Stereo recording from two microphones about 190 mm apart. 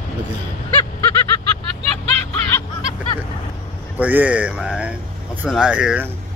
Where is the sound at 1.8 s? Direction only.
35° right (ahead or behind).